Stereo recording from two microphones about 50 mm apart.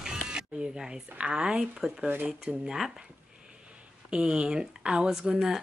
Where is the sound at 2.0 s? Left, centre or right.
Right.